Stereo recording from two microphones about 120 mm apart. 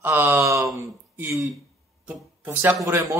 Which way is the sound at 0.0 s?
15° right (ahead or behind).